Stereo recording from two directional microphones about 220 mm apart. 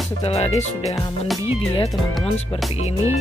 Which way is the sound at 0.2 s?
30° left (ahead or behind).